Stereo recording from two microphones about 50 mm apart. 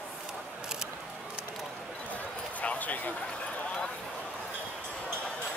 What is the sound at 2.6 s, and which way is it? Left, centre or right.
Bow-wow, left.